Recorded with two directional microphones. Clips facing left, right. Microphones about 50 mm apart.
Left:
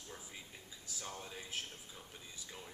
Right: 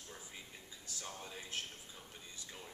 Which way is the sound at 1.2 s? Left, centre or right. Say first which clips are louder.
Even; centre.